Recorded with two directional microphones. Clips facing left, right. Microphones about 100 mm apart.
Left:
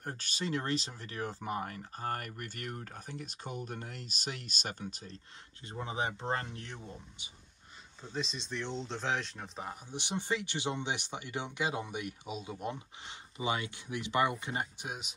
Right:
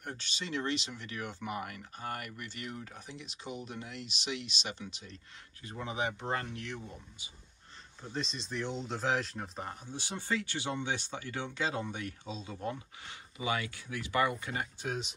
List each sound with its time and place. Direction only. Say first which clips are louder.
0.0 s speech: left 3 dB; 40° left (ahead or behind)
8.1 s speech: even; centre (ahead or behind)
9.8 s speech: left 2 dB; 20° left (ahead or behind)